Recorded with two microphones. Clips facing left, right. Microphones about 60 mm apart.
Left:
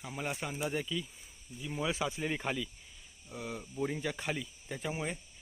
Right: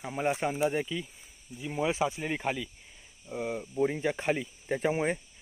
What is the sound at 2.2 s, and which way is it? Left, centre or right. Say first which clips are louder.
Speech: right 3 dB; centre.